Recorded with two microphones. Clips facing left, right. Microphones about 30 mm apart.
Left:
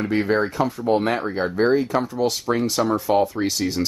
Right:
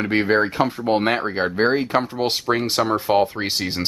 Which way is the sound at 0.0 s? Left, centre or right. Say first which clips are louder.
Right 2 dB; right.